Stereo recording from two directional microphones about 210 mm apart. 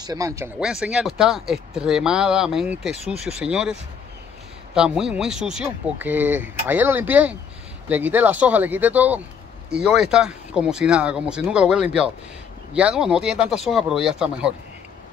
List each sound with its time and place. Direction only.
0.0 s speech: 15° right (ahead or behind)
0.6 s speech: 5° right (ahead or behind)
4.7 s speech: 5° right (ahead or behind)